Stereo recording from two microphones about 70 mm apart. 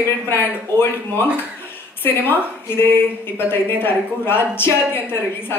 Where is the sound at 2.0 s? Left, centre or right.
Left.